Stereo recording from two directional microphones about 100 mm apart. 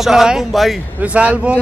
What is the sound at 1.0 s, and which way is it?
Speech, 10° right (ahead or behind).